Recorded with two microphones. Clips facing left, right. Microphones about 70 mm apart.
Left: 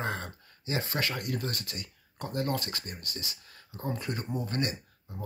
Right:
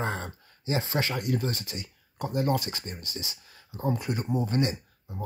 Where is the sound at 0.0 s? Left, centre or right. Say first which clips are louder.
Right 2 dB; right.